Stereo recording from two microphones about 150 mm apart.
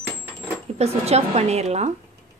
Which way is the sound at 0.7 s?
45° right (ahead or behind).